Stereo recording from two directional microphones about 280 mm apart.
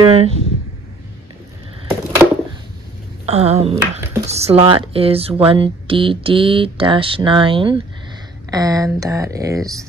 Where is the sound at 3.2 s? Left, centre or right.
Right.